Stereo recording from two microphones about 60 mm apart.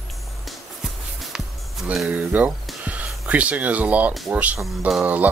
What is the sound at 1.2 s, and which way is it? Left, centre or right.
Music, centre.